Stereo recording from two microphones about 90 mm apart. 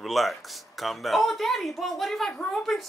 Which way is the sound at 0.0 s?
Centre (ahead or behind).